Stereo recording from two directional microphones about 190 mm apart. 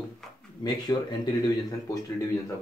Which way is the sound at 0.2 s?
Centre (ahead or behind).